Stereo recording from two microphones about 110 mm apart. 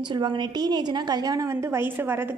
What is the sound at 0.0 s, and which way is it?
A woman's voice, 45° right (ahead or behind).